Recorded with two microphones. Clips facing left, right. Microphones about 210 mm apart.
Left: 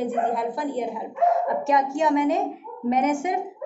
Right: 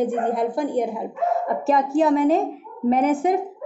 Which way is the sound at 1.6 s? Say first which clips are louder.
Right 6 dB; 35° right (ahead or behind).